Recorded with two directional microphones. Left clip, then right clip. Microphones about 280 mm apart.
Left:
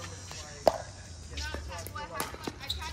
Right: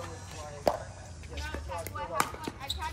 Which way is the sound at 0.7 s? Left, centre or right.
Centre.